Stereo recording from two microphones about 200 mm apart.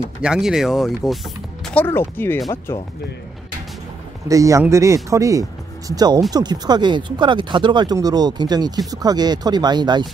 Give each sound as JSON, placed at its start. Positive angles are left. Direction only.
{"t": 0.2, "sound": "speech", "side_deg": -5}
{"t": 1.7, "sound": "speech", "side_deg": 10}
{"t": 4.3, "sound": "speech", "side_deg": -15}